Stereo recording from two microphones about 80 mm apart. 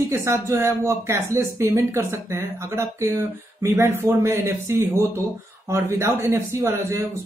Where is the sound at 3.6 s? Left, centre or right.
Right.